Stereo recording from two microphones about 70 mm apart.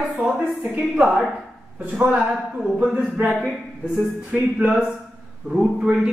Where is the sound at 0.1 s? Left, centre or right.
Right.